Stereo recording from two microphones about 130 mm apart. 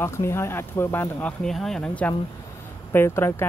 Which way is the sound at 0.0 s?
20° left (ahead or behind).